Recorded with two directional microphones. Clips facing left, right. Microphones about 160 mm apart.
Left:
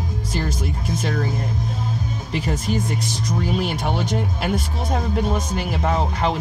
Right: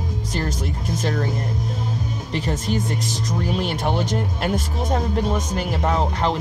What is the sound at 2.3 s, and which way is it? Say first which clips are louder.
Speech: even; 5° left (ahead or behind).